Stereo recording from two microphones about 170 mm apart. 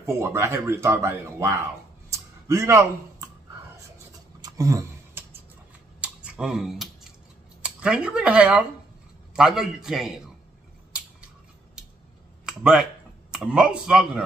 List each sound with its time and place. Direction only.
0.0 s speech: 15° right (ahead or behind)
2.0 s a sound: 15° right (ahead or behind)
4.4 s a sound: 20° right (ahead or behind)
5.9 s typing: 5° right (ahead or behind)
7.6 s a man's voice: 5° right (ahead or behind)
12.4 s a man's voice: 5° right (ahead or behind)